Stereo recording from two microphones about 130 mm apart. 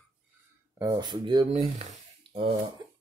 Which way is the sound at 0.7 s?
25° right (ahead or behind).